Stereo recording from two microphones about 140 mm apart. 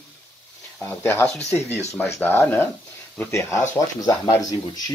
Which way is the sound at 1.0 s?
15° left (ahead or behind).